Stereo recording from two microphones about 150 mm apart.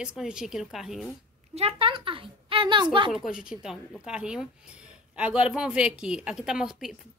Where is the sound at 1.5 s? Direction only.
40° right (ahead or behind).